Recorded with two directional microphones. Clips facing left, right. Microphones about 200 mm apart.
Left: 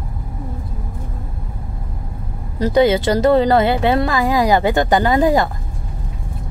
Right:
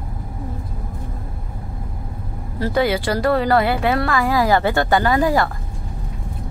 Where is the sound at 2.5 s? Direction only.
20° left (ahead or behind).